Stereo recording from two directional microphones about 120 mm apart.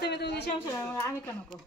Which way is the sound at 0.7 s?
25° left (ahead or behind).